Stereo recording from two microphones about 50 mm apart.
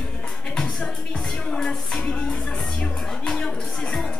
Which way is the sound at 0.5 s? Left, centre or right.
Centre.